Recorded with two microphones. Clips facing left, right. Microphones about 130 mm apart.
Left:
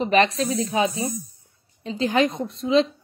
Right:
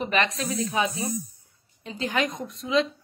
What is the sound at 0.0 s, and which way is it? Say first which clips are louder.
A woman's voice: left 6 dB; 30° left (ahead or behind).